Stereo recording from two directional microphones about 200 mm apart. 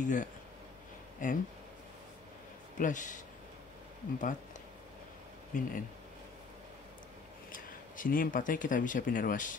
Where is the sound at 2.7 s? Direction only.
40° left (ahead or behind).